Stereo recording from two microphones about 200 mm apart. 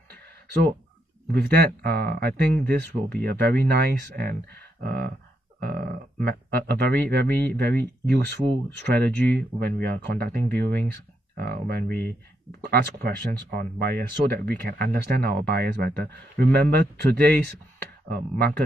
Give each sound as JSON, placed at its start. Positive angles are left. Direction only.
{"t": 1.3, "sound": "speech", "side_deg": -50}
{"t": 5.6, "sound": "burping", "side_deg": -50}
{"t": 6.2, "sound": "speech", "side_deg": -55}